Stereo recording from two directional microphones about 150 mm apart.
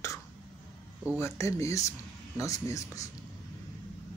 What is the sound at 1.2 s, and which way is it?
Speech, 20° left (ahead or behind).